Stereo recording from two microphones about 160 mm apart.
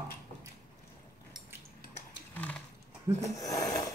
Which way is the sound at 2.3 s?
10° left (ahead or behind).